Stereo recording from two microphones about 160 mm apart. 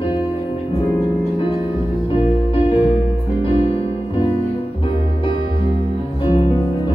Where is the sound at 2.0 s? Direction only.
35° left (ahead or behind).